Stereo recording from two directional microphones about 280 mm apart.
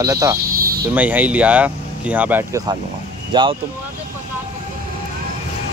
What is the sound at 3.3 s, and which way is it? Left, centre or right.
Speech, centre.